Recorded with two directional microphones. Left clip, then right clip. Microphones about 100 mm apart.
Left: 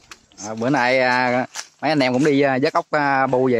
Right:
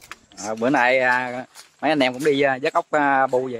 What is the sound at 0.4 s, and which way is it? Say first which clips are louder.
Speech: right 1 dB; 25° left (ahead or behind).